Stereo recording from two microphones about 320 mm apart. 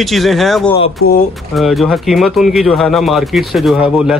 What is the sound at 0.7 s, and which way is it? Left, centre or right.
Speech, centre.